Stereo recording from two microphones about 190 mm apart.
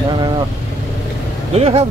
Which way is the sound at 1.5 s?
30° right (ahead or behind).